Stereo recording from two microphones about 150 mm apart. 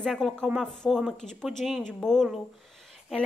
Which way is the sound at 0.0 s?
Centre (ahead or behind).